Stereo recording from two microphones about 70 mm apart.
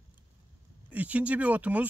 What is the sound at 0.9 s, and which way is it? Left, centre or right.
Speech, right.